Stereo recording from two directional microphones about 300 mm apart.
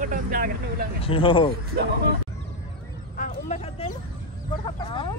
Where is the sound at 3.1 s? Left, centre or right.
Left.